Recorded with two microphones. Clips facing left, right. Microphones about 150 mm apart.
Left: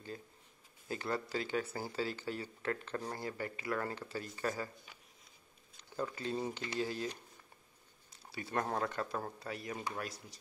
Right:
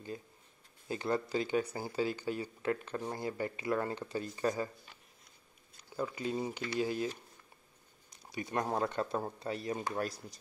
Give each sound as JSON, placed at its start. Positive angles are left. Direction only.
{"t": 0.8, "sound": "speech", "side_deg": -20}
{"t": 5.8, "sound": "speech", "side_deg": -10}
{"t": 8.1, "sound": "speech", "side_deg": -15}